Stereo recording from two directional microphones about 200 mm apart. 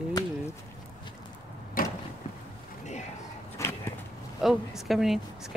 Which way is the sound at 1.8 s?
45° left (ahead or behind).